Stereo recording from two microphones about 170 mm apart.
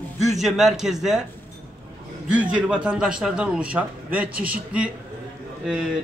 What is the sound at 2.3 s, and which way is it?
A man's voice, 5° right (ahead or behind).